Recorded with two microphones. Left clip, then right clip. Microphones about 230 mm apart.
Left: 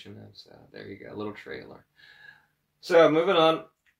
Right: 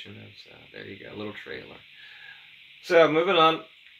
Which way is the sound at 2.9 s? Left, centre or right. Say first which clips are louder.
Even; centre.